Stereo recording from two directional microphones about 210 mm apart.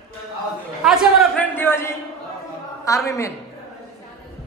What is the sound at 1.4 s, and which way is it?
Speech, 10° left (ahead or behind).